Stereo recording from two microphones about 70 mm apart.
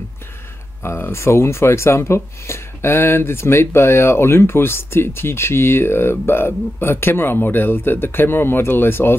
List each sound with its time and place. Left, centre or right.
0.8 s speech: left